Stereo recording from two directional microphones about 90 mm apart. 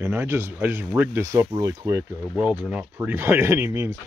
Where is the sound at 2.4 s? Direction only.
15° right (ahead or behind).